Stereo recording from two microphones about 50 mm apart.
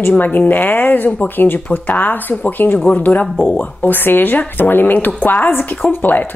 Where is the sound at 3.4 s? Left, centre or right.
Left.